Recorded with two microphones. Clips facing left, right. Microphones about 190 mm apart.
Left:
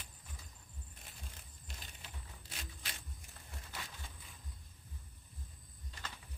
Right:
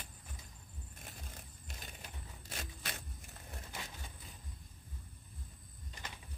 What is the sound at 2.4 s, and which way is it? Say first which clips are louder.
Scrape: right 6 dB; 50° right (ahead or behind).